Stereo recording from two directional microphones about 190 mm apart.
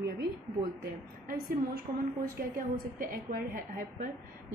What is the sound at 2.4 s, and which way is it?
A woman's voice, 45° right (ahead or behind).